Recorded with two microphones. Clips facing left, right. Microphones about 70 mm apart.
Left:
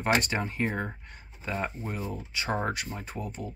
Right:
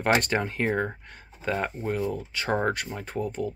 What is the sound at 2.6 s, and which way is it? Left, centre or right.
Speech, right.